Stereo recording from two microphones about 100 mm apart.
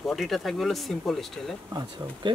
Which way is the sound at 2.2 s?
55° right (ahead or behind).